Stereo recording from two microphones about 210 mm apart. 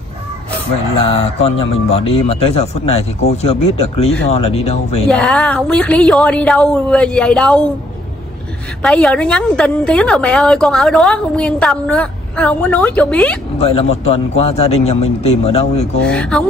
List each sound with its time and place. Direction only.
0.9 s speech: 30° left (ahead or behind)
5.0 s a woman's voice: 5° left (ahead or behind)
8.8 s a woman's voice: 5° left (ahead or behind)
13.6 s speech: 30° left (ahead or behind)
16.1 s a woman's voice: 5° left (ahead or behind)